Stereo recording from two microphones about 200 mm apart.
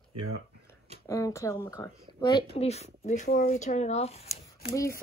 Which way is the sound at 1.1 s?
15° left (ahead or behind).